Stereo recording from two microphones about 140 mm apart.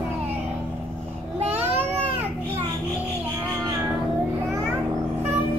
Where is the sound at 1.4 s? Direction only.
15° right (ahead or behind).